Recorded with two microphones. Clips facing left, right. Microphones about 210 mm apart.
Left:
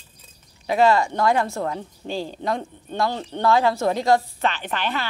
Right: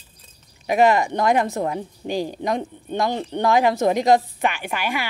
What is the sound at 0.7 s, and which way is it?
A woman's voice, 20° right (ahead or behind).